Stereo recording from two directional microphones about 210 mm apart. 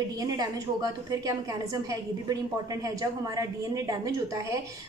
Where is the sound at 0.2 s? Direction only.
15° right (ahead or behind).